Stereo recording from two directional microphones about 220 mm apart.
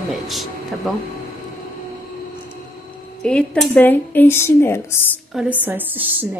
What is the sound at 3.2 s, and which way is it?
Speech, 5° left (ahead or behind).